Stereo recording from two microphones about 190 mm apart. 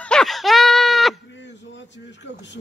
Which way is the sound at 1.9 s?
70° left (ahead or behind).